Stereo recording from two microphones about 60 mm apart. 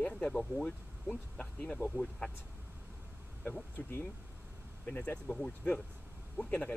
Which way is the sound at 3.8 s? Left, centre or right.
Left.